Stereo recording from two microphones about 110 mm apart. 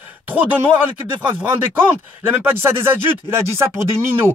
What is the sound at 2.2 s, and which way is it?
Speech, 20° right (ahead or behind).